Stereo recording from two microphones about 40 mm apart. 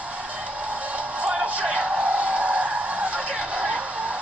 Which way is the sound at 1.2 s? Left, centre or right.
Right.